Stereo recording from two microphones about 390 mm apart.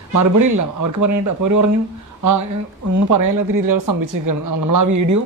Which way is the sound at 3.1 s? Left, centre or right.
Right.